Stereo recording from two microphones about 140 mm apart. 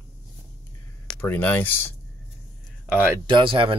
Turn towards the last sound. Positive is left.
turn(degrees=-40)  # may be behind; listen again after turning